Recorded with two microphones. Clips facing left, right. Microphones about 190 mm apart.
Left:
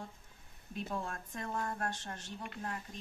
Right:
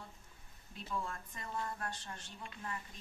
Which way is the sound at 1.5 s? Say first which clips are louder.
Left 3 dB; 50° left (ahead or behind).